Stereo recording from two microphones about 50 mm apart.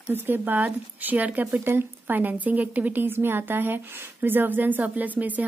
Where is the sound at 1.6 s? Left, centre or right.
Right.